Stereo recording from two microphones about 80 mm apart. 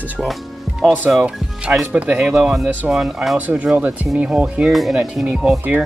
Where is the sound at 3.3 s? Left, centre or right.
Centre.